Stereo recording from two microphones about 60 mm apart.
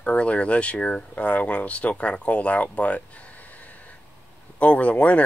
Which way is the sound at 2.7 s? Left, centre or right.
Left.